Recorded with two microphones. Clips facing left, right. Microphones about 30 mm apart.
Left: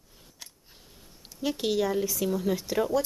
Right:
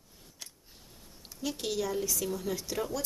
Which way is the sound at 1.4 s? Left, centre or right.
Left.